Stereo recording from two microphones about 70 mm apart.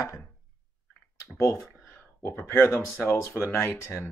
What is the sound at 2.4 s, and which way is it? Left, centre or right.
Speech, left.